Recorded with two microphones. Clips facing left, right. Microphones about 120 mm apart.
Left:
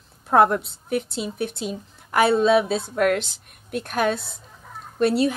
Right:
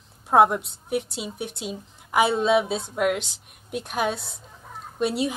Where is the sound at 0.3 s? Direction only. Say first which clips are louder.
Left 1 dB; 10° right (ahead or behind).